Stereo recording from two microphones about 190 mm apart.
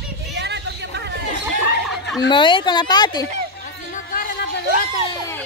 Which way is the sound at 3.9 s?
45° left (ahead or behind).